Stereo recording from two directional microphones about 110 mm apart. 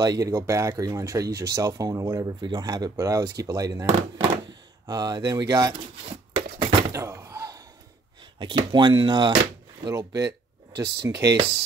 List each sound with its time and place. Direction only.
0.0 s speech: 35° right (ahead or behind)
6.6 s door: 25° right (ahead or behind)
8.2 s speech: 45° right (ahead or behind)
9.8 s speech: 30° right (ahead or behind)